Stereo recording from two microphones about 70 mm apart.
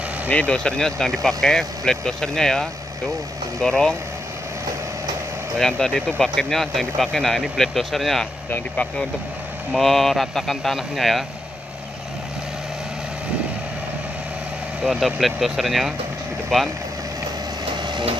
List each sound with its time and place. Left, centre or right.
0.3 s speech: centre
5.6 s speech: centre
8.5 s speech: left
9.7 s speech: centre
14.8 s speech: centre